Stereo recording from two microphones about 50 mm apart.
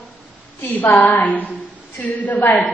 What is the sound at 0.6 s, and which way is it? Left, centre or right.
A woman's voice, left.